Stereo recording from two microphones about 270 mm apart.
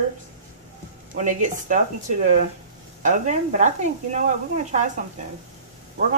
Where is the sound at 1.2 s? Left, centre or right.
Right.